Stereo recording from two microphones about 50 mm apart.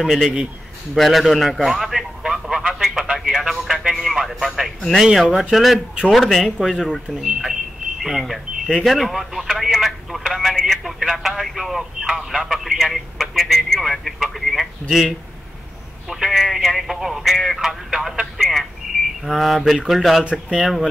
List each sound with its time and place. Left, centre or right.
0.0 s a man's voice: centre
6.4 s speech: centre
20.2 s speech: centre
20.6 s speech: centre